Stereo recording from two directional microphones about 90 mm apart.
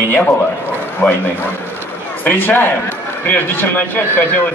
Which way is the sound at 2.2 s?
20° left (ahead or behind).